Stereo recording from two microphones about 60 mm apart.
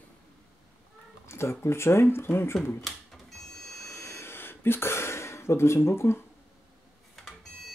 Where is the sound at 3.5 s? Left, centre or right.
Left.